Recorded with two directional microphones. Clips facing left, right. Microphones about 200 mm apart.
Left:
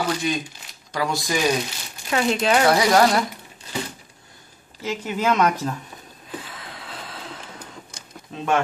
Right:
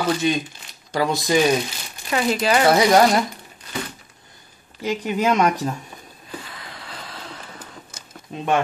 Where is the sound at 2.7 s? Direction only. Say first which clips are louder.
Right 4 dB; 25° right (ahead or behind).